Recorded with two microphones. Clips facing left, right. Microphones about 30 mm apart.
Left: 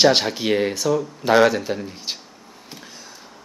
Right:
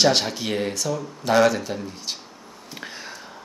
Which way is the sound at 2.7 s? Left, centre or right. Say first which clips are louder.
Right 6 dB; right.